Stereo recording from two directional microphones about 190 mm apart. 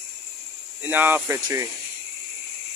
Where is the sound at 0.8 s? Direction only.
10° right (ahead or behind).